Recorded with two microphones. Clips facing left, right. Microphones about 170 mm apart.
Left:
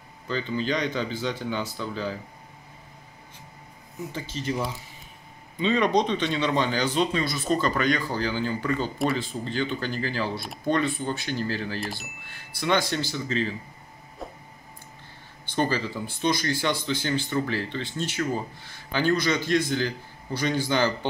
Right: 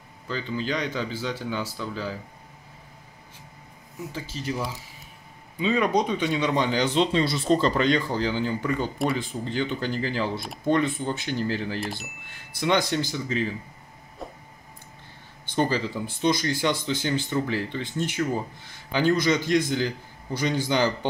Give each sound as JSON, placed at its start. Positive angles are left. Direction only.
{"t": 0.3, "sound": "speech", "side_deg": -5}
{"t": 4.1, "sound": "speech", "side_deg": -5}
{"t": 8.9, "sound": "speech", "side_deg": 0}
{"t": 9.2, "sound": "speech", "side_deg": -15}
{"t": 11.8, "sound": "speech", "side_deg": 0}
{"t": 12.5, "sound": "speech", "side_deg": -20}
{"t": 14.2, "sound": "a sound", "side_deg": 0}
{"t": 15.5, "sound": "speech", "side_deg": -15}